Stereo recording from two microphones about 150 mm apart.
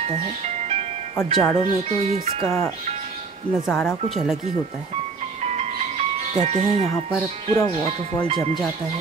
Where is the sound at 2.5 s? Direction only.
20° left (ahead or behind).